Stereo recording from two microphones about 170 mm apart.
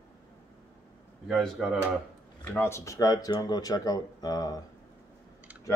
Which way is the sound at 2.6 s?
15° left (ahead or behind).